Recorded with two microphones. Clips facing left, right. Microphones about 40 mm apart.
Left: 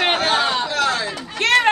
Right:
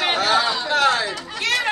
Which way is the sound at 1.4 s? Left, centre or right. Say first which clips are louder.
Left 6 dB; left.